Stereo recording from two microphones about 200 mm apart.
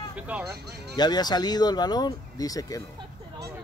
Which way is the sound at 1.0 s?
20° left (ahead or behind).